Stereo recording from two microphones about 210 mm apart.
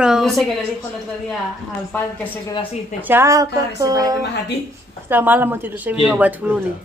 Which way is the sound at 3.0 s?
10° right (ahead or behind).